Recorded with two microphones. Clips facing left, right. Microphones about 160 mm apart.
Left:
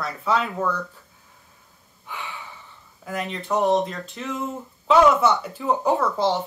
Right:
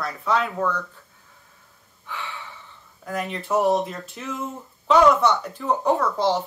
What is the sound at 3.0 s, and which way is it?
Speech, centre (ahead or behind).